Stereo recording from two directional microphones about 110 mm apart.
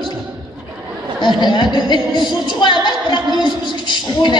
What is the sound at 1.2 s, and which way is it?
A woman's voice, 40° left (ahead or behind).